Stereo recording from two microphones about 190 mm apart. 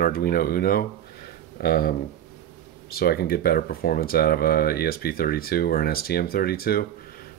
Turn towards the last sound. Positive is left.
turn(degrees=50)  # may be behind; listen again after turning